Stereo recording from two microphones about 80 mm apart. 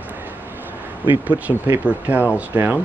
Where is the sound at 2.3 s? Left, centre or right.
Centre.